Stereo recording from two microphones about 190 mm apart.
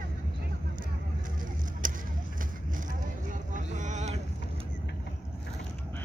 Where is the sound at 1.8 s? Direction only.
45° right (ahead or behind).